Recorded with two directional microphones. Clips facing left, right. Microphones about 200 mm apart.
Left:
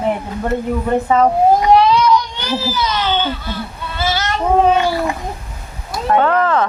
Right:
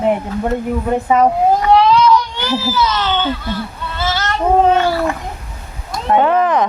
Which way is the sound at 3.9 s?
10° left (ahead or behind).